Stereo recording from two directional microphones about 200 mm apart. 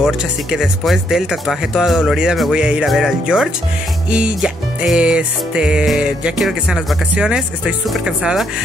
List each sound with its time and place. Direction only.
0.0 s music: centre (ahead or behind)